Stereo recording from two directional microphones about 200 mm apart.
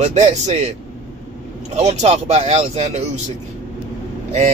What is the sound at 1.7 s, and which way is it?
Speech, 35° right (ahead or behind).